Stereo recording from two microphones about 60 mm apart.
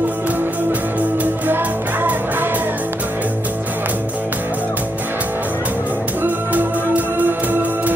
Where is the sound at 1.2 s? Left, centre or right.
Right.